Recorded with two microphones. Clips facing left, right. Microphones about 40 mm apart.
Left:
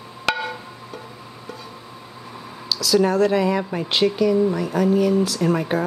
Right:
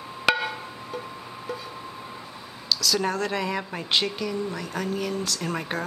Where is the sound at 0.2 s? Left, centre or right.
Centre.